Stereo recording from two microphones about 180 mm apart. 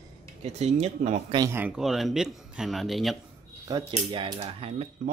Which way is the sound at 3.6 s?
25° right (ahead or behind).